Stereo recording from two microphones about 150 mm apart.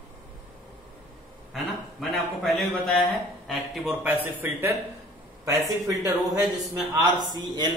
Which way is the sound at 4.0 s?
15° right (ahead or behind).